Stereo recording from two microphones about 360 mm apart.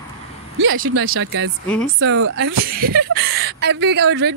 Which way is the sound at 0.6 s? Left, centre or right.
Right.